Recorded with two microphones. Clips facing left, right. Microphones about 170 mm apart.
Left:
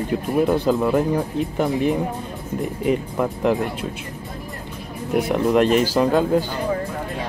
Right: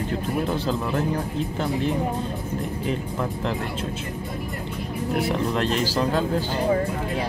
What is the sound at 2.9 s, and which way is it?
Speech, 10° left (ahead or behind).